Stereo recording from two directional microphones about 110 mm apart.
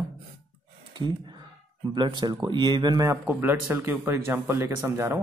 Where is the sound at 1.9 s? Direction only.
40° right (ahead or behind).